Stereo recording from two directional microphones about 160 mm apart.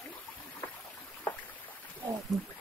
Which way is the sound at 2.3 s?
Centre (ahead or behind).